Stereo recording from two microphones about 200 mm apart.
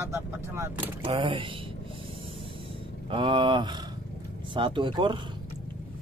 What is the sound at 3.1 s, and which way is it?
Speech, 25° right (ahead or behind).